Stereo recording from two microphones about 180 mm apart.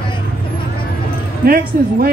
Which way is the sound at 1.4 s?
55° right (ahead or behind).